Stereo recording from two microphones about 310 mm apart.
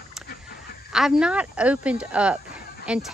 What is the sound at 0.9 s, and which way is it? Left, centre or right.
Speech, centre.